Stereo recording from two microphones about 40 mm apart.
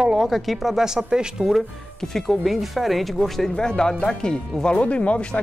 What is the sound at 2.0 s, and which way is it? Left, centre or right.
Speech, centre.